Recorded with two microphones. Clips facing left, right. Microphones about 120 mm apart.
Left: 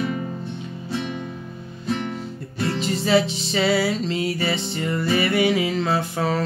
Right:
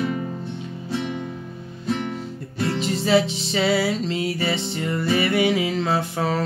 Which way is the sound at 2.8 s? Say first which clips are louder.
Even; 20° right (ahead or behind).